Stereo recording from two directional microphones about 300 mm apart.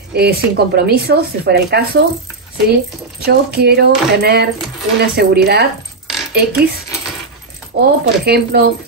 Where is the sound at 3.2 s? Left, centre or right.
Right.